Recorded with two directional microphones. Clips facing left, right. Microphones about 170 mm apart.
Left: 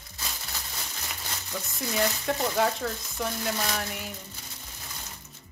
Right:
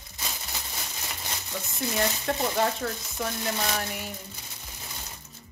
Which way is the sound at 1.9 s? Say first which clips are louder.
Left 1 dB; centre (ahead or behind).